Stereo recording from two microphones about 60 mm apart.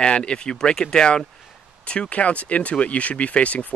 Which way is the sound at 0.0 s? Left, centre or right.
Centre.